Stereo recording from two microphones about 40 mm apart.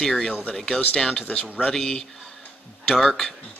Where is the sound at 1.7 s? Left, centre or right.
Centre.